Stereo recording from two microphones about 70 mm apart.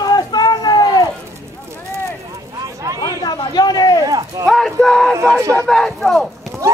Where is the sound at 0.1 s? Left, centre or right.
Left.